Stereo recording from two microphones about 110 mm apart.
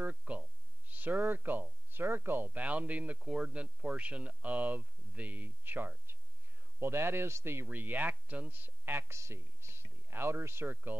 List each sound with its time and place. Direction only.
0.0 s speech: 10° right (ahead or behind)